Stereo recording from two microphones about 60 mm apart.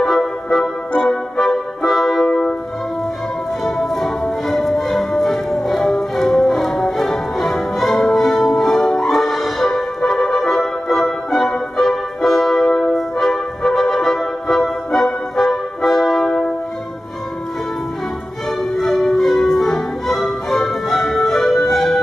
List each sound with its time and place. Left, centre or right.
0.0 s music: centre
0.9 s music: centre
1.5 s music: centre
3.6 s music: centre
18.8 s music: centre